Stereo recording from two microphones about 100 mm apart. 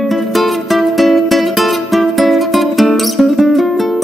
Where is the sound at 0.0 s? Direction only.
Centre (ahead or behind).